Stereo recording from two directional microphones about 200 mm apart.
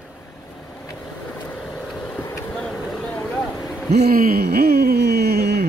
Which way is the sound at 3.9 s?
50° right (ahead or behind).